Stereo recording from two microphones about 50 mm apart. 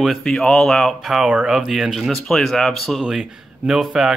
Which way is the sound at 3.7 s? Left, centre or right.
Centre.